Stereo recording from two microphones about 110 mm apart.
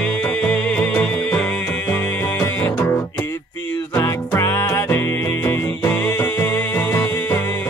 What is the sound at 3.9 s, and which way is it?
Music, 25° left (ahead or behind).